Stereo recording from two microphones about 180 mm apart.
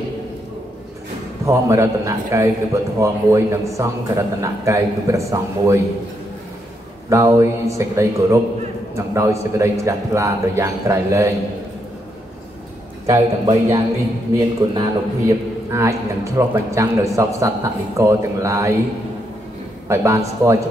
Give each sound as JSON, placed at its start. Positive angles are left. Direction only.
{"t": 1.4, "sound": "a man's voice", "side_deg": -15}
{"t": 7.1, "sound": "a man's voice", "side_deg": -15}
{"t": 13.0, "sound": "a man's voice", "side_deg": -15}
{"t": 19.9, "sound": "a man's voice", "side_deg": -15}